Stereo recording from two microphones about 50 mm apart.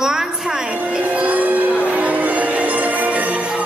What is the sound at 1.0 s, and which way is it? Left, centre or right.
Music, right.